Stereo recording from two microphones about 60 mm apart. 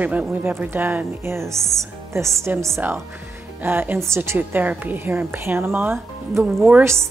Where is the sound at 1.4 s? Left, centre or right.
Right.